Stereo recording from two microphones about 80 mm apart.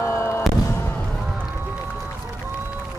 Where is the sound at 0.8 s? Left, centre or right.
Left.